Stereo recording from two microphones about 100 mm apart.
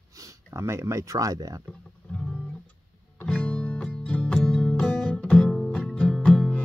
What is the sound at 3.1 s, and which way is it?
Music, 15° left (ahead or behind).